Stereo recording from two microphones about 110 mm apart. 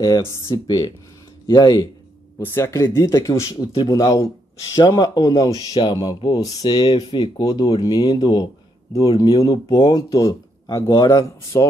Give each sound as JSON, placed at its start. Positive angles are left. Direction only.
{"t": 0.2, "sound": "speech", "side_deg": 30}
{"t": 2.3, "sound": "speech", "side_deg": 25}
{"t": 2.7, "sound": "speech", "side_deg": 35}